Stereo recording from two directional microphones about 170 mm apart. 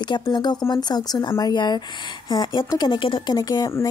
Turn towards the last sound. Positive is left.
turn(degrees=20)  # may be behind; listen again after turning